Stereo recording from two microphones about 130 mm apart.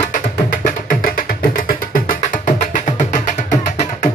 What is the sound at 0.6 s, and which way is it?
Music, 90° left.